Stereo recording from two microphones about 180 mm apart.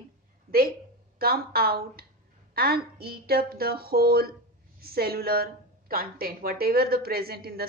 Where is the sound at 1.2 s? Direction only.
60° right (ahead or behind).